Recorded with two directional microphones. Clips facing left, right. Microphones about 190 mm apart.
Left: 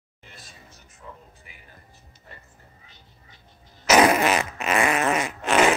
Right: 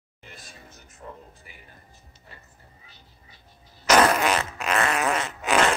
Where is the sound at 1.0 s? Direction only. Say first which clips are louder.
Right 3 dB; 40° right (ahead or behind).